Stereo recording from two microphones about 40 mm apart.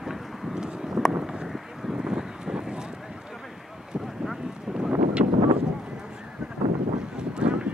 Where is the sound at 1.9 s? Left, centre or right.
Centre.